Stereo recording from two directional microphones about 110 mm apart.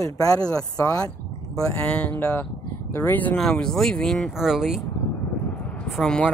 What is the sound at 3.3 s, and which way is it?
Speech, 5° left (ahead or behind).